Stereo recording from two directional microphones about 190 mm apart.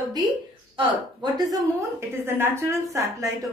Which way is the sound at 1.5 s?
15° right (ahead or behind).